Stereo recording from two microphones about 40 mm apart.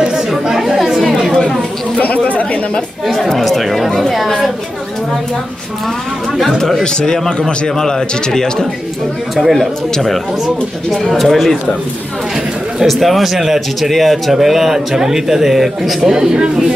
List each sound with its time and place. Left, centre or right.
0.6 s chatter: centre
2.0 s speech: left
3.2 s a man's voice: centre
6.8 s a man's voice: centre
9.3 s a man's voice: centre
11.1 s a man's voice: centre
12.8 s a man's voice: centre
16.0 s speech: centre